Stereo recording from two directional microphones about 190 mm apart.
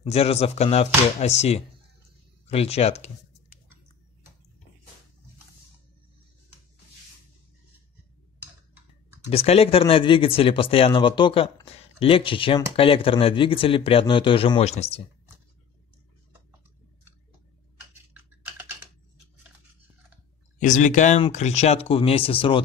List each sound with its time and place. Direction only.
0.0 s speech: 30° left (ahead or behind)
9.3 s speech: 30° left (ahead or behind)
18.1 s typing: 10° right (ahead or behind)
20.5 s speech: 40° left (ahead or behind)